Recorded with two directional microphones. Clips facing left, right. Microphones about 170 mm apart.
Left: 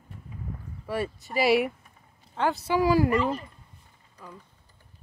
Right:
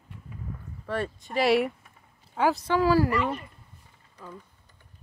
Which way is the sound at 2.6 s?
10° left (ahead or behind).